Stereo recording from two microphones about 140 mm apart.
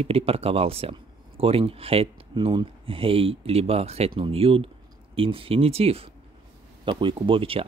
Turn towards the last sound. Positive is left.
turn(degrees=-40)  # may be behind; listen again after turning